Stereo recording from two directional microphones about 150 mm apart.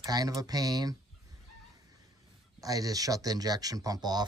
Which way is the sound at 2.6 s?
25° right (ahead or behind).